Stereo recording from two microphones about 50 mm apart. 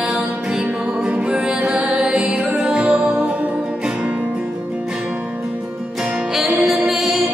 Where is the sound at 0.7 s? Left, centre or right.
Right.